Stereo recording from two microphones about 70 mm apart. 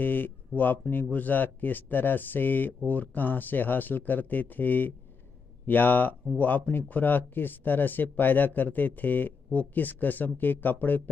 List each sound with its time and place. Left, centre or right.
0.0 s speech: left